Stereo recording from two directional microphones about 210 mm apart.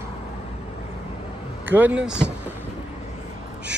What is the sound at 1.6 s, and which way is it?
Speech, 10° right (ahead or behind).